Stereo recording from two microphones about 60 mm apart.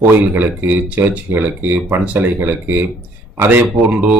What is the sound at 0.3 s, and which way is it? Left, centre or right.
Speech, right.